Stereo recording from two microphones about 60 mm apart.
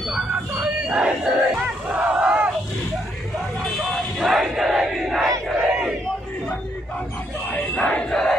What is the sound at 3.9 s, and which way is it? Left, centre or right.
Battle cry, centre.